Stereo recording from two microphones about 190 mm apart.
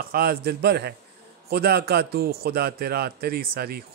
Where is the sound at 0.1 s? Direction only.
55° right (ahead or behind).